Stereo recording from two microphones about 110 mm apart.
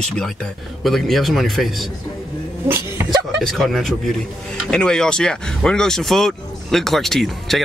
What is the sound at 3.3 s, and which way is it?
Speech, centre (ahead or behind).